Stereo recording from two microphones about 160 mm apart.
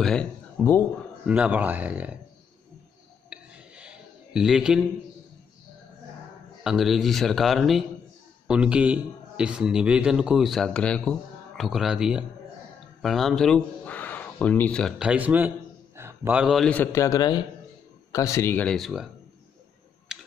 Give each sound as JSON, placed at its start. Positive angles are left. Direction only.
{"t": 0.0, "sound": "speech", "side_deg": 5}
{"t": 1.2, "sound": "speech", "side_deg": -10}
{"t": 3.3, "sound": "a sound", "side_deg": -5}
{"t": 6.6, "sound": "a man's voice", "side_deg": 0}
{"t": 20.1, "sound": "computer keyboard", "side_deg": -5}